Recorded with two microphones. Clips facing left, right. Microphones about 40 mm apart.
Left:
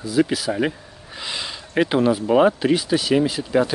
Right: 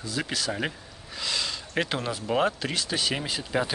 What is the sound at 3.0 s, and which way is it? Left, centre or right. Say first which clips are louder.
Speech: left 10 dB; centre.